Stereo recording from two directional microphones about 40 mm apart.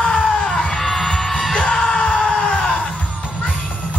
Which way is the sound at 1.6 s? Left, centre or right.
Centre.